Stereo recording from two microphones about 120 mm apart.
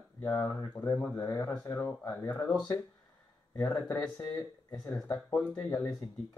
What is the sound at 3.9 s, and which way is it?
Speech, 10° left (ahead or behind).